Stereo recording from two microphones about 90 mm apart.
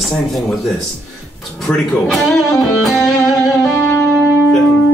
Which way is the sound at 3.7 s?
25° left (ahead or behind).